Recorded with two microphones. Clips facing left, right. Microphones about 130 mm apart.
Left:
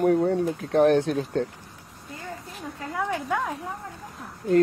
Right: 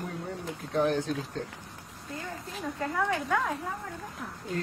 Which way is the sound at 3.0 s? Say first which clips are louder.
Left 3 dB; 15° left (ahead or behind).